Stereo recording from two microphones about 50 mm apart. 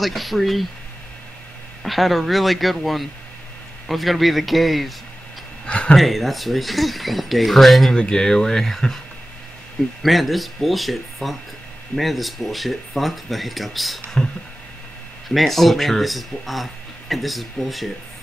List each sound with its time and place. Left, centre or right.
0.0 s speech: centre
1.8 s speech: centre
5.7 s a sound: left
5.9 s speech: centre
7.9 s speech: centre
10.0 s speech: centre
15.2 s speech: centre